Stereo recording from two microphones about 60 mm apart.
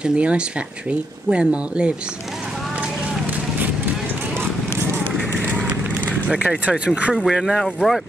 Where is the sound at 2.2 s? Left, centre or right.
Centre.